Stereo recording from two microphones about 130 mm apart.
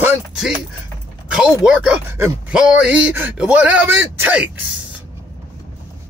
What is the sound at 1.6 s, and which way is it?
Speech, 10° right (ahead or behind).